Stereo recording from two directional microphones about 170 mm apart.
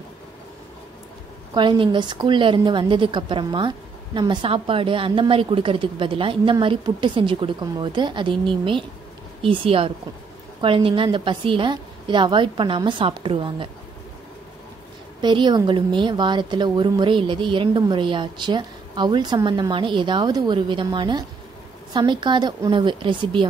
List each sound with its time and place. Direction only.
1.5 s a woman's voice: 25° right (ahead or behind)
9.4 s a woman's voice: 30° right (ahead or behind)
15.2 s a woman's voice: 25° right (ahead or behind)